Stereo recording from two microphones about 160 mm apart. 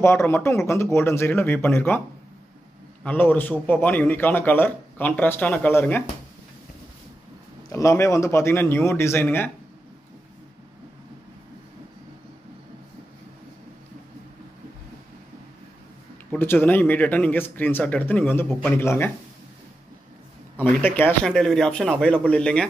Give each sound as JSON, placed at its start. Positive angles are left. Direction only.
{"t": 0.0, "sound": "speech", "side_deg": 15}
{"t": 3.0, "sound": "speech", "side_deg": 10}
{"t": 7.7, "sound": "speech", "side_deg": 20}
{"t": 16.3, "sound": "speech", "side_deg": 10}
{"t": 20.8, "sound": "speech", "side_deg": 10}